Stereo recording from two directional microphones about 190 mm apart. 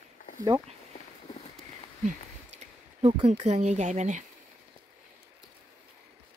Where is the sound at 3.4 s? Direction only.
35° right (ahead or behind).